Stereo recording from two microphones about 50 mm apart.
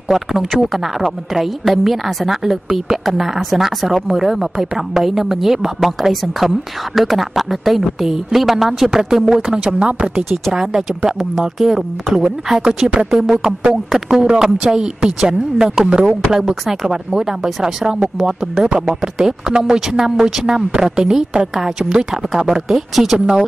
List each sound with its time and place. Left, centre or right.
0.1 s a woman's voice: centre
9.8 s speech: right
10.5 s speech: centre
22.5 s speech: centre